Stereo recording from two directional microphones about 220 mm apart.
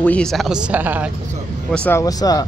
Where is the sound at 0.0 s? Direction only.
5° left (ahead or behind).